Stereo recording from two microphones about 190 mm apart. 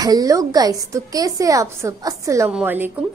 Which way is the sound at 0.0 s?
20° right (ahead or behind).